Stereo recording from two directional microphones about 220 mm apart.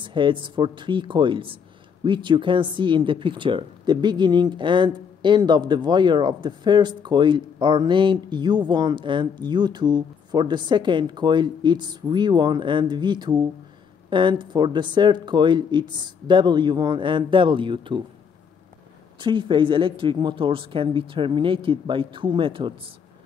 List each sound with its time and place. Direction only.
0.0 s speech: 20° right (ahead or behind)
19.1 s speech: 20° right (ahead or behind)